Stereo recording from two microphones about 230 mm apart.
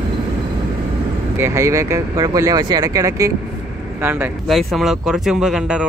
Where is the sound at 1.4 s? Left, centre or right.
Centre.